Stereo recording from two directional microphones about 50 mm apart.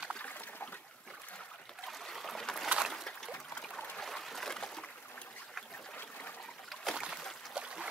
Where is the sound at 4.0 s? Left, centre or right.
Centre.